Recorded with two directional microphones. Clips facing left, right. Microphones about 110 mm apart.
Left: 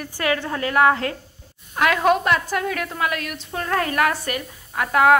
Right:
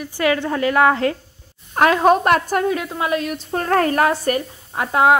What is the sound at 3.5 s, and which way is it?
A woman's voice, 45° right (ahead or behind).